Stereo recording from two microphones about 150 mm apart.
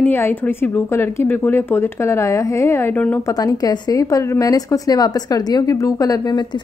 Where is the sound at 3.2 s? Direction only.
25° left (ahead or behind).